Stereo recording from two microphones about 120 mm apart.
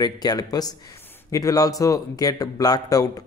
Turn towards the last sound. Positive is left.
turn(degrees=30)  # may be behind; listen again after turning